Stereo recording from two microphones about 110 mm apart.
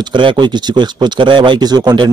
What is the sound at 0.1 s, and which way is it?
A man's voice, 45° right (ahead or behind).